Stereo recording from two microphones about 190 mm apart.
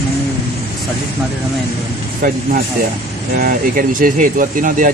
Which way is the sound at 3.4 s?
45° right (ahead or behind).